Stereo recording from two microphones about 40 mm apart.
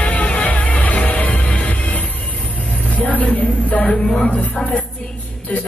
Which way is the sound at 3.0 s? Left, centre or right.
Left.